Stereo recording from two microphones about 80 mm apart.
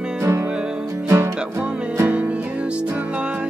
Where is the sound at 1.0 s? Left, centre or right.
Right.